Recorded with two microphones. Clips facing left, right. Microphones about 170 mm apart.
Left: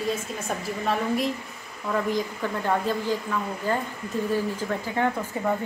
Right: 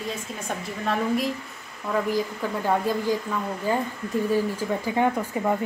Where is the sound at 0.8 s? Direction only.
Centre (ahead or behind).